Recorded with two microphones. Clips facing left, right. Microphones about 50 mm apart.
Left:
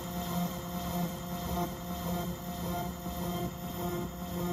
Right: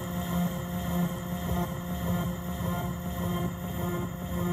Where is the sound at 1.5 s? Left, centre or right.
Right.